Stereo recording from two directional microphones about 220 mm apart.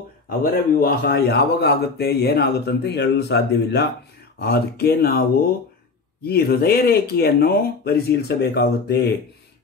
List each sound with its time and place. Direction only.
0.4 s speech: 40° left (ahead or behind)
6.2 s speech: 45° left (ahead or behind)